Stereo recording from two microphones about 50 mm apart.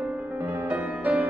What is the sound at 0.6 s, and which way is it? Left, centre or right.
Music, right.